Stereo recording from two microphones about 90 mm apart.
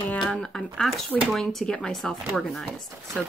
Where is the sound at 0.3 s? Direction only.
10° left (ahead or behind).